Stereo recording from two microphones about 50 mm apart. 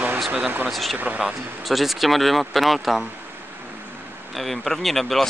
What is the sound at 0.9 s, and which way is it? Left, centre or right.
Speech, right.